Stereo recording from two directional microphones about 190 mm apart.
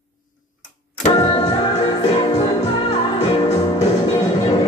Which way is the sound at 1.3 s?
25° left (ahead or behind).